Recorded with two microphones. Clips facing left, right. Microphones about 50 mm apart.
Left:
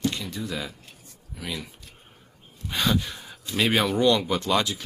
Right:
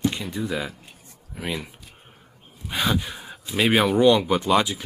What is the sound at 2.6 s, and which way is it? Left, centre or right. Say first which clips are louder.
Speech: right 1 dB; centre.